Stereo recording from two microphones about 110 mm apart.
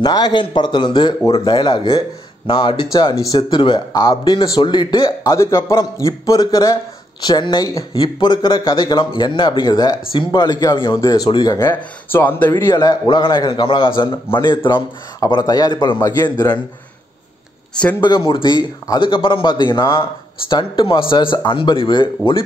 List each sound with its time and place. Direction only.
0.0 s speech: 40° left (ahead or behind)
5.2 s a man's voice: 25° left (ahead or behind)
11.2 s speech: 45° left (ahead or behind)
11.7 s speech: 20° left (ahead or behind)
12.7 s speech: 45° left (ahead or behind)
15.1 s a man's voice: 35° left (ahead or behind)
18.0 s speech: 50° left (ahead or behind)